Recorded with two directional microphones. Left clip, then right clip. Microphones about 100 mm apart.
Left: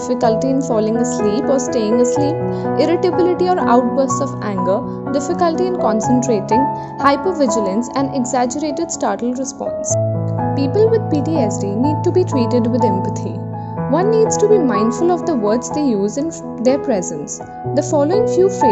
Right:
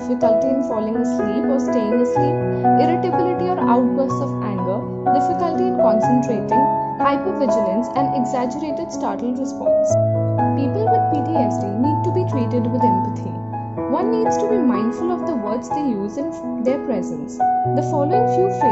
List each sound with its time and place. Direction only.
0.1 s speech: 40° left (ahead or behind)
10.6 s speech: 40° left (ahead or behind)
11.4 s speech: 35° left (ahead or behind)
13.9 s speech: 35° left (ahead or behind)